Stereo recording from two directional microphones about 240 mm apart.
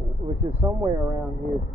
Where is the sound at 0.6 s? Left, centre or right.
Centre.